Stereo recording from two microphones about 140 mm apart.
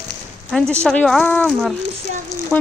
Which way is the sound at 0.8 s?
5° left (ahead or behind).